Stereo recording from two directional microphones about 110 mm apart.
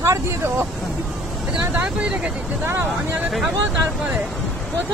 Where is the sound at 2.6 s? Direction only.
20° right (ahead or behind).